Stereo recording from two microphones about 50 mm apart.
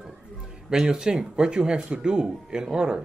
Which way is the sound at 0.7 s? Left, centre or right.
Centre.